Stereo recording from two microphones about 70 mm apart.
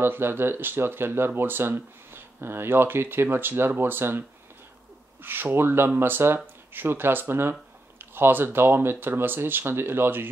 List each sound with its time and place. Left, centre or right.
0.0 s speech: right
5.2 s speech: right